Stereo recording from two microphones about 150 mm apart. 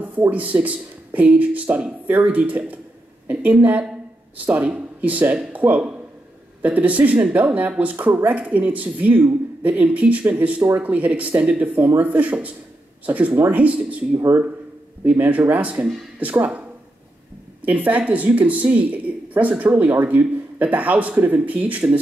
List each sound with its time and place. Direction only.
0.0 s speech: 10° right (ahead or behind)
14.1 s speech: 25° right (ahead or behind)
15.0 s speech: 10° right (ahead or behind)